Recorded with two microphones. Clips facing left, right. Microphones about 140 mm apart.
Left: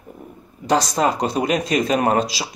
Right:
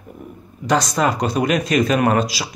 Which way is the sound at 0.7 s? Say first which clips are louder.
Even; 30° left (ahead or behind).